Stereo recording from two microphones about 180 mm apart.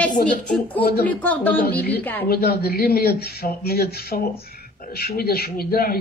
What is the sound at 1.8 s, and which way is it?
Speech, 65° left (ahead or behind).